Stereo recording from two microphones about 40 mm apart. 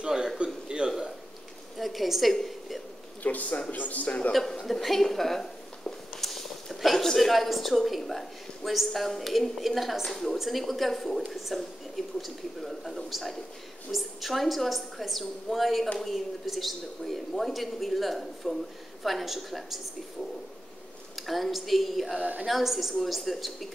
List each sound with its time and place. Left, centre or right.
0.0 s a sound: centre
1.8 s a woman's voice: centre
2.3 s a sound: centre
3.2 s a man's voice: left
4.6 s a woman's voice: centre
21.2 s a woman's voice: centre
22.2 s a woman's voice: right
22.5 s a woman's voice: centre